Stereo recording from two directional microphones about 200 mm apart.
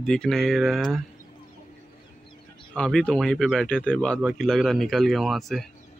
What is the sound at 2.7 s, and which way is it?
Speech, 5° left (ahead or behind).